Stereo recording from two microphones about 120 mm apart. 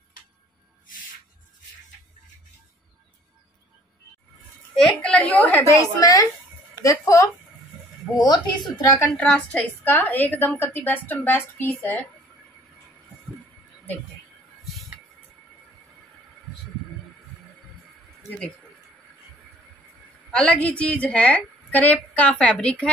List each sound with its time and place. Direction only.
4.7 s a woman's voice: 5° left (ahead or behind)
5.7 s a woman's voice: 30° left (ahead or behind)
8.8 s a woman's voice: 30° left (ahead or behind)
9.1 s a woman's voice: 10° left (ahead or behind)
14.6 s music: centre (ahead or behind)
20.2 s a woman's voice: 10° left (ahead or behind)